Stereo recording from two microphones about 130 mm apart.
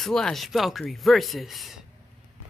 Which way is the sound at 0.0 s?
5° left (ahead or behind).